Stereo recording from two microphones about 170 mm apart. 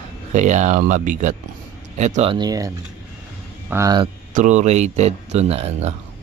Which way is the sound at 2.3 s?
20° right (ahead or behind).